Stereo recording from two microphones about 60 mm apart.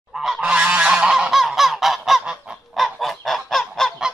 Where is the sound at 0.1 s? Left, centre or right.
Centre.